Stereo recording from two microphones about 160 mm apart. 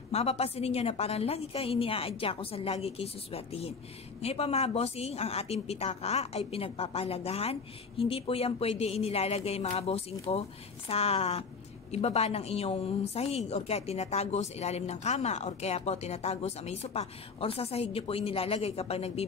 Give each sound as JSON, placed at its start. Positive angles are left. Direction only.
{"t": 0.1, "sound": "a woman's voice", "side_deg": 40}